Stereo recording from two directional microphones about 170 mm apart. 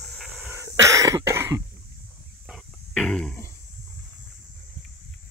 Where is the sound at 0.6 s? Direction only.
20° right (ahead or behind).